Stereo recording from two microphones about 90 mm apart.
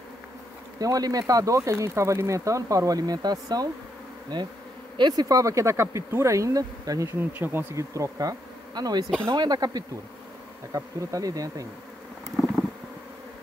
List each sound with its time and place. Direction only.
0.7 s speech: 45° right (ahead or behind)
7.1 s bee: 25° right (ahead or behind)
7.7 s bee: 35° right (ahead or behind)
9.3 s speech: 50° right (ahead or behind)
10.7 s speech: 40° right (ahead or behind)